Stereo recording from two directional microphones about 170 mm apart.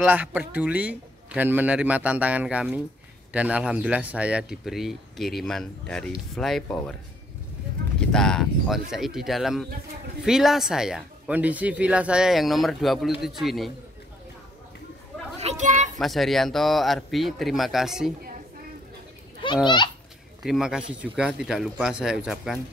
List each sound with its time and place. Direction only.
0.0 s a man's voice: 10° right (ahead or behind)
8.0 s speech: 5° left (ahead or behind)
15.3 s a sound: 40° right (ahead or behind)
16.0 s speech: centre (ahead or behind)
19.4 s a child's voice: 25° left (ahead or behind)
20.4 s speech: 5° right (ahead or behind)